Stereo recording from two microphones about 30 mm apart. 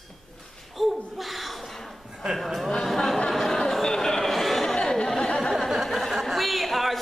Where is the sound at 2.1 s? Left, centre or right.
Centre.